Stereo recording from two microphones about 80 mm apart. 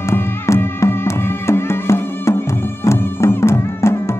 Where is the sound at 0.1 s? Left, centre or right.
Left.